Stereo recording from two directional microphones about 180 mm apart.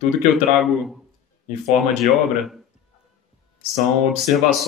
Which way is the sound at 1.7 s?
Centre (ahead or behind).